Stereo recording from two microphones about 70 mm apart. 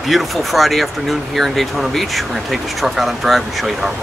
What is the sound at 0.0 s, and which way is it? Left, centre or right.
Speech, centre.